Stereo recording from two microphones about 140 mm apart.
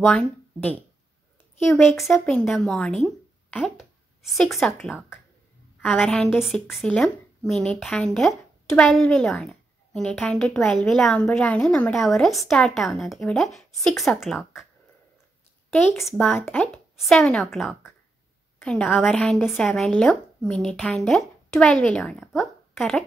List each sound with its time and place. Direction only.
0.0 s speech: 5° left (ahead or behind)
1.7 s speech: centre (ahead or behind)
3.5 s a sound: centre (ahead or behind)
4.6 s speech: 5° left (ahead or behind)
15.8 s speech: 15° left (ahead or behind)
16.7 s a child's voice: 5° left (ahead or behind)